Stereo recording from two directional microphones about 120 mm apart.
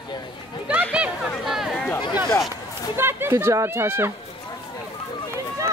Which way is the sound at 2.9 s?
20° right (ahead or behind).